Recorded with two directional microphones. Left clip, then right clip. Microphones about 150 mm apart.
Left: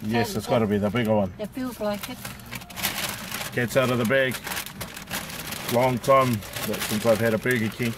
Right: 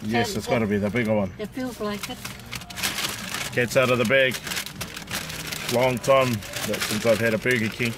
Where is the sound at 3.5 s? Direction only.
Centre (ahead or behind).